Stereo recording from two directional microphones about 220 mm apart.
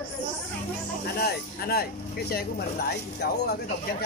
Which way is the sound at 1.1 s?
45° left (ahead or behind).